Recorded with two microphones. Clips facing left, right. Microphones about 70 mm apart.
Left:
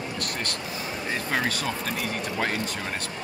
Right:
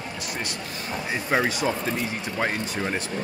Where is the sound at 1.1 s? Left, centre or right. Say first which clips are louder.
Right 3 dB; centre.